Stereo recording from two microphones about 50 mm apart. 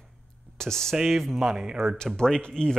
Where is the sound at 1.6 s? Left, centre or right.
Centre.